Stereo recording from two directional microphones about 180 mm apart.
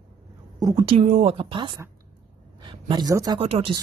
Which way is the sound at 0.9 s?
35° right (ahead or behind).